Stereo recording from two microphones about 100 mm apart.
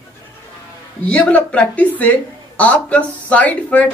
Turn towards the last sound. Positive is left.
turn(degrees=15)  # may be behind; listen again after turning